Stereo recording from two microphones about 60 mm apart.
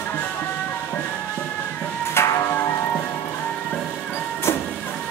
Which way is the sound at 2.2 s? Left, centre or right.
Left.